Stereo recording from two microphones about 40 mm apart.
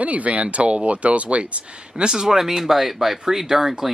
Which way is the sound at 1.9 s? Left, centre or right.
Centre.